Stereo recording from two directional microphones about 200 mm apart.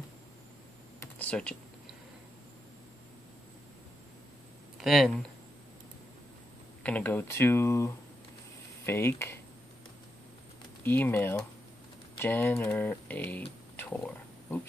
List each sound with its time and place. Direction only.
0.9 s computer keyboard: 10° left (ahead or behind)
4.7 s speech: centre (ahead or behind)
6.8 s speech: 5° left (ahead or behind)
10.8 s speech: 10° left (ahead or behind)
13.7 s a sound: 10° left (ahead or behind)